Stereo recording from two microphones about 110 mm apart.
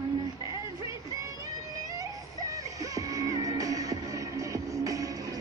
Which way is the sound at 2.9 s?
30° right (ahead or behind).